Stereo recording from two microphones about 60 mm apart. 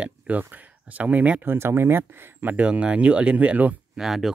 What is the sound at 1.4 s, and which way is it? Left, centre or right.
Speech, right.